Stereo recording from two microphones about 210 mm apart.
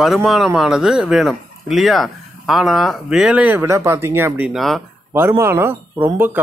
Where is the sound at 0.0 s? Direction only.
Centre (ahead or behind).